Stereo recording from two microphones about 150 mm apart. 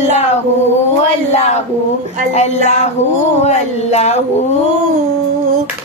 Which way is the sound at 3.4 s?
45° left (ahead or behind).